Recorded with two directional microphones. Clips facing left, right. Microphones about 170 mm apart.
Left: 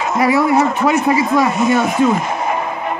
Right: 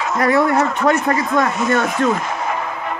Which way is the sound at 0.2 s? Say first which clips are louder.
Left 2 dB; 5° left (ahead or behind).